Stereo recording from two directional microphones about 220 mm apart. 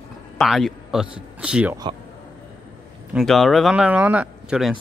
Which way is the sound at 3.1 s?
Centre (ahead or behind).